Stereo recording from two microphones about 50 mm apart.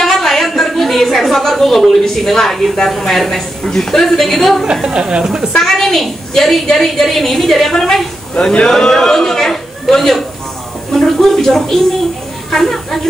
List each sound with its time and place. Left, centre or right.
0.0 s a woman's voice: centre
4.8 s speech: centre
5.6 s a woman's voice: centre
8.4 s a woman's voice: centre
8.6 s a man's voice: centre